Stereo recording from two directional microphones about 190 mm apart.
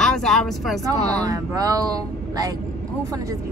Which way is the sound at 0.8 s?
20° right (ahead or behind).